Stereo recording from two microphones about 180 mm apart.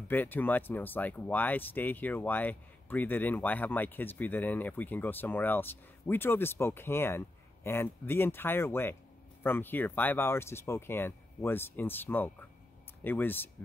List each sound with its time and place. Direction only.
0.1 s speech: 10° left (ahead or behind)